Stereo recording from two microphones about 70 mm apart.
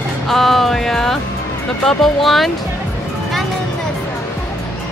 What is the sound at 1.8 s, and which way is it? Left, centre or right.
Speech, centre.